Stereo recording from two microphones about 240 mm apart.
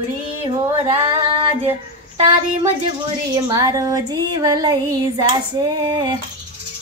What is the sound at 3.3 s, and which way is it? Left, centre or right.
Female singing, centre.